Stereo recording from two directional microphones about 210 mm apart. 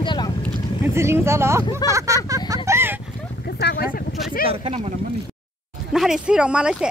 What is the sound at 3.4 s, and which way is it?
Speech, 50° left (ahead or behind).